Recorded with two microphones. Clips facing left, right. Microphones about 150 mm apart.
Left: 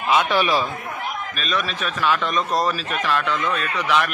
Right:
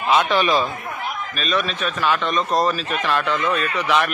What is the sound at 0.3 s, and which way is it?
A man's voice, 10° left (ahead or behind).